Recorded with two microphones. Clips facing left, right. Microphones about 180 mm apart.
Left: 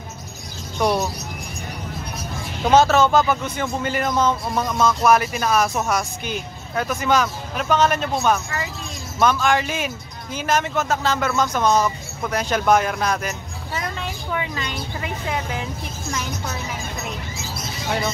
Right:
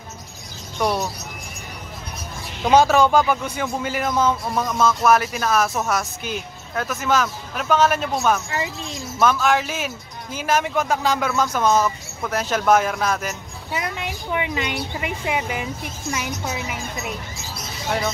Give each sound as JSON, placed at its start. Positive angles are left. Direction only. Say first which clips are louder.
{"t": 0.7, "sound": "speech", "louder": "left 2 dB", "side_deg": 5}
{"t": 2.7, "sound": "speech", "louder": "even", "side_deg": -10}